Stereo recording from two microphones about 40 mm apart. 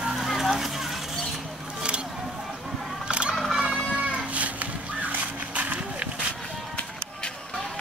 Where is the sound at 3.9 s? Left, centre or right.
Right.